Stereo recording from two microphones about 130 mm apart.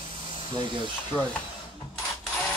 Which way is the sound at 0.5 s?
40° right (ahead or behind).